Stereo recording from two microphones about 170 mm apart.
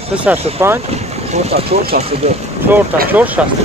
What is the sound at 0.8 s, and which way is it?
Speech, 40° right (ahead or behind).